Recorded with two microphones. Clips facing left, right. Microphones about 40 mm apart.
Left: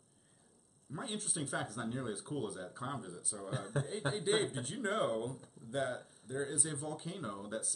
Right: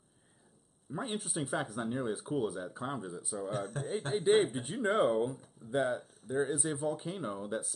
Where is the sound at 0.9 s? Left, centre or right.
Centre.